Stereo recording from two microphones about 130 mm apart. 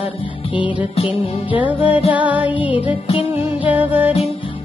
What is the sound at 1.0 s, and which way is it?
Music, 40° left (ahead or behind).